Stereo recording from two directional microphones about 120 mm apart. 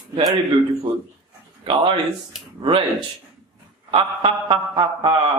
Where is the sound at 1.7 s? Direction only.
50° right (ahead or behind).